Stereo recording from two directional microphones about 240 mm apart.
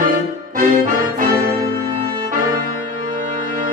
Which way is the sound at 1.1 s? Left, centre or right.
Right.